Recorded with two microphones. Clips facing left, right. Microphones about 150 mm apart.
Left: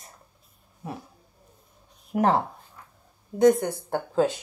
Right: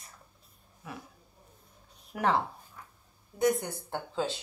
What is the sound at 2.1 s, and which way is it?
Speech, 40° left (ahead or behind).